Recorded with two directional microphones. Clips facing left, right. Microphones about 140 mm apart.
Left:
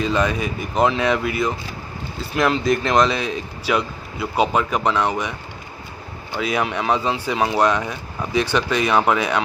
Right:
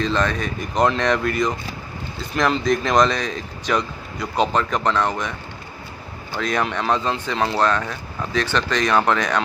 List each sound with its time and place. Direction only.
0.0 s speech: 10° left (ahead or behind)
6.3 s speech: 5° left (ahead or behind)